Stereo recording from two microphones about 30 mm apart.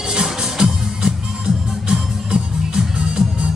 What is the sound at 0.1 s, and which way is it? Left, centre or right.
Music, right.